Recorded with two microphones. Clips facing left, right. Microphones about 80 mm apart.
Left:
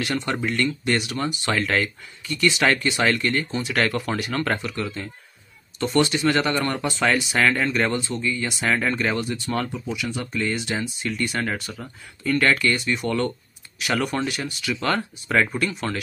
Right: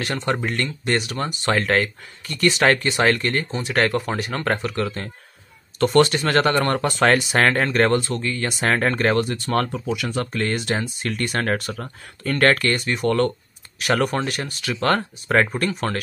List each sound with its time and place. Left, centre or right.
0.0 s speech: right
4.6 s speech: right
8.5 s speech: right